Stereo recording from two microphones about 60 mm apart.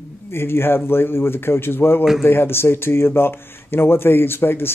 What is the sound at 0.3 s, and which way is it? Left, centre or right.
Speech, left.